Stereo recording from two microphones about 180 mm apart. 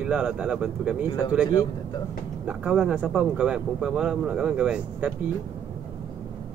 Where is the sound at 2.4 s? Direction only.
5° right (ahead or behind).